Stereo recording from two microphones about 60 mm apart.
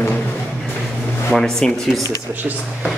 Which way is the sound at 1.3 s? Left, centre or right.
Centre.